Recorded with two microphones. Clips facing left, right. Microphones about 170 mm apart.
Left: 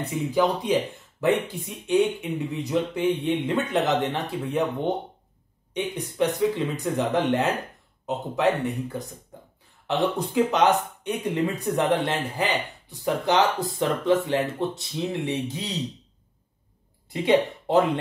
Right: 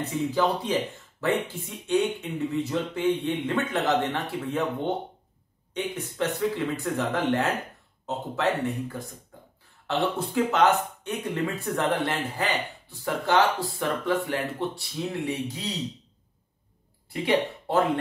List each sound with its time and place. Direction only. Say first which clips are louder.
0.0 s speech: left 2 dB; 15° left (ahead or behind)
1.9 s speech: left 3 dB; 15° left (ahead or behind)
17.1 s speech: left 4 dB; 20° left (ahead or behind)